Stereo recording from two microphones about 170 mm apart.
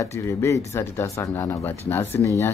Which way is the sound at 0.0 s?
15° left (ahead or behind).